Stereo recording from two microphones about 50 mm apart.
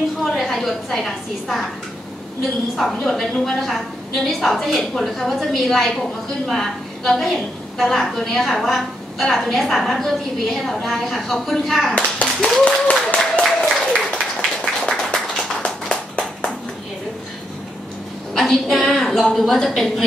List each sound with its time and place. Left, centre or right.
0.2 s a woman's voice: centre
2.7 s a woman's voice: centre
11.9 s a child's voice: left
12.6 s applause: left
13.4 s applause: centre
13.9 s a sound: centre
18.3 s a sound: centre
19.3 s a woman's voice: centre